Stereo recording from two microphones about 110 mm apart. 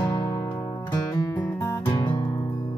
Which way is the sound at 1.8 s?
45° left (ahead or behind).